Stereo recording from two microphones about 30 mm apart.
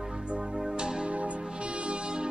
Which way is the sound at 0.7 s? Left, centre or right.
Right.